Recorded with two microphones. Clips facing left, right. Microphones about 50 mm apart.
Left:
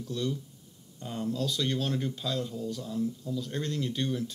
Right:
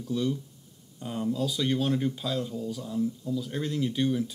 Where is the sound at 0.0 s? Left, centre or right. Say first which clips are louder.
Right 4 dB; centre.